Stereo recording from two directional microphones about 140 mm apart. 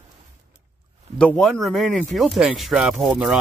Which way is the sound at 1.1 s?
10° left (ahead or behind).